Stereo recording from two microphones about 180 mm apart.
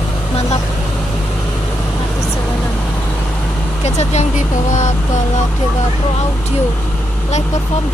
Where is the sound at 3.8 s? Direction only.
40° left (ahead or behind).